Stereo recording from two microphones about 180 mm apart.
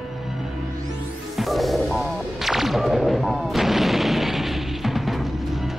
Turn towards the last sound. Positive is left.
turn(degrees=0)  # may be behind; listen again after turning